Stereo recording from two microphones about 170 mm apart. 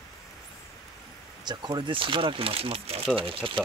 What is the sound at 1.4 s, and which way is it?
Speech, 25° right (ahead or behind).